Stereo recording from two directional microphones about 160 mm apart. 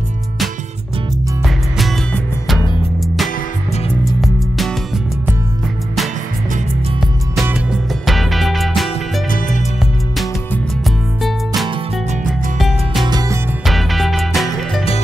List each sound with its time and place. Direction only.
1.4 s music: centre (ahead or behind)
4.2 s music: centre (ahead or behind)
7.4 s music: 5° right (ahead or behind)
11.2 s music: centre (ahead or behind)
13.1 s music: 20° right (ahead or behind)
13.7 s music: centre (ahead or behind)